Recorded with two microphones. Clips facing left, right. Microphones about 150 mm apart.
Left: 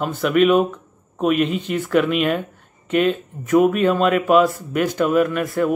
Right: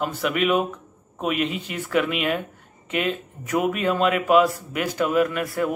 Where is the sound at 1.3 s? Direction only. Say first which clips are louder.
Left 6 dB; 45° left (ahead or behind).